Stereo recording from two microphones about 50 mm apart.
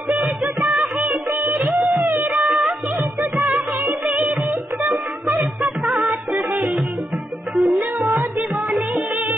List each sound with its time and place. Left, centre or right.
0.1 s music: right
4.8 s music: right
5.6 s music of bollywood: centre
6.3 s music: right
7.5 s music: centre
8.1 s music: right